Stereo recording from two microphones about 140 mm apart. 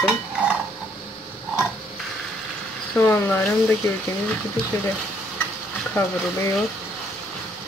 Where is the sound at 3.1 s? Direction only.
15° left (ahead or behind).